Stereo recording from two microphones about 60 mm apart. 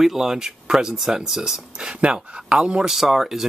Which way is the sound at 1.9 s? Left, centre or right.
Centre.